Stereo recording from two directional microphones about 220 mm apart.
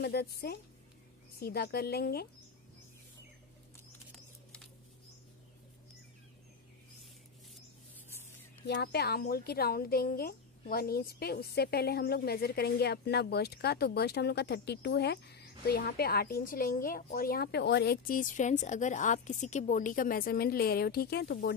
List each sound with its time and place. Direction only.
0.0 s speech: 45° left (ahead or behind)
8.6 s speech: 50° left (ahead or behind)